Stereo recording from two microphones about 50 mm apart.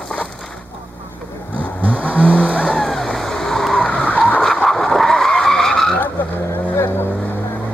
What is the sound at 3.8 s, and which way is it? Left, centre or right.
Vehicle, left.